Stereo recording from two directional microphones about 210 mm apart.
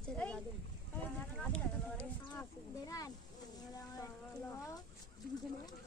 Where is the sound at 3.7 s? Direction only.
15° left (ahead or behind).